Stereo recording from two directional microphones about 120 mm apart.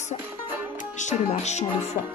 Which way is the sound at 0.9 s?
75° left (ahead or behind).